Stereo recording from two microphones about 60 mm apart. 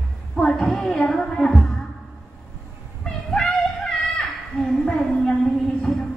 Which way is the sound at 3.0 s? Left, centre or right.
Centre.